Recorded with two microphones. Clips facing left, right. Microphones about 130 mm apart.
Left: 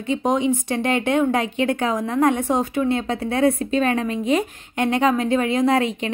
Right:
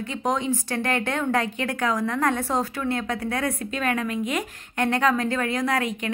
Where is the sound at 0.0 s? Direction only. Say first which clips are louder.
Left 6 dB; 20° left (ahead or behind).